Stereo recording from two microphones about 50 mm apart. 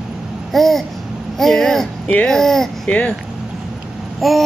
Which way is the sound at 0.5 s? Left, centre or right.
Centre.